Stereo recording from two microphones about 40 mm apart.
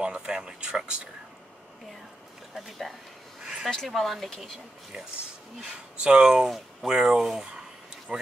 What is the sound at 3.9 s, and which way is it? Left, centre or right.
Speech, centre.